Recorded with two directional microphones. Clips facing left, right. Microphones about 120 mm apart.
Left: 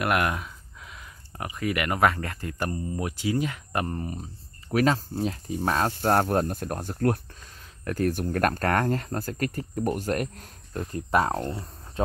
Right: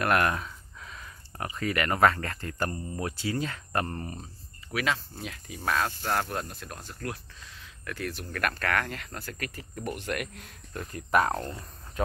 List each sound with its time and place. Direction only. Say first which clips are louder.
0.0 s speech: even; 10° left (ahead or behind)
4.7 s speech: left 7 dB; 40° left (ahead or behind)
5.9 s speech: left 8 dB; 45° left (ahead or behind)
7.8 s speech: left 10 dB; 45° left (ahead or behind); by 11.7 s 25° left (ahead or behind)